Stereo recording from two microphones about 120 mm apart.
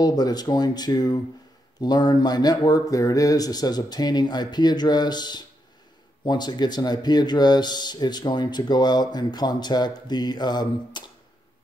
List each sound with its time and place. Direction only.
0.0 s speech: 35° left (ahead or behind)